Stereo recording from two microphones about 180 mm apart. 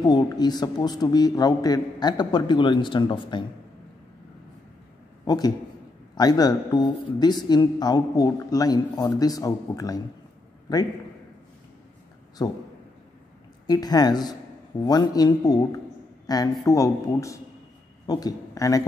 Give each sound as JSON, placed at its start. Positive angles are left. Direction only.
{"t": 0.0, "sound": "speech", "side_deg": 25}
{"t": 5.2, "sound": "a man's voice", "side_deg": 20}
{"t": 12.4, "sound": "speech", "side_deg": 20}
{"t": 13.7, "sound": "a man's voice", "side_deg": 20}